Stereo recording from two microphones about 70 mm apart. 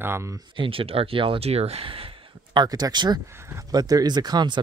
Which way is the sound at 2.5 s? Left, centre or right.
Right.